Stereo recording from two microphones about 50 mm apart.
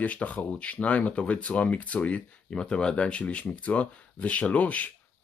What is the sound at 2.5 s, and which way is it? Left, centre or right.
Speech, centre.